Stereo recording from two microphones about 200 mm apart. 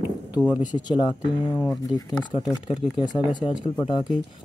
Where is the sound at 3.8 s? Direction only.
25° left (ahead or behind).